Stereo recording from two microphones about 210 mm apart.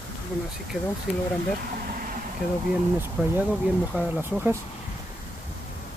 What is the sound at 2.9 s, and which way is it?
Speech, 10° right (ahead or behind).